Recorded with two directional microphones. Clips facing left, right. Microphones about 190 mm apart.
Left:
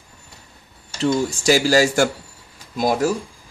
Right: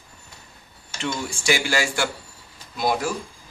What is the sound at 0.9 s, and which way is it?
Speech, 35° left (ahead or behind).